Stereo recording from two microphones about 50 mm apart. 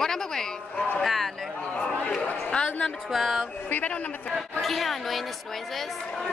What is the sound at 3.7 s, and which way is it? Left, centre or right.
Speech, left.